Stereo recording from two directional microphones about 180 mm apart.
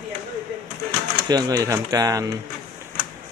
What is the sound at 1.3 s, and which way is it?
Speech, 20° right (ahead or behind).